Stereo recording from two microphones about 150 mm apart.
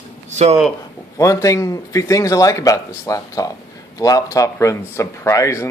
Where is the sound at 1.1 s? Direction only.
20° left (ahead or behind).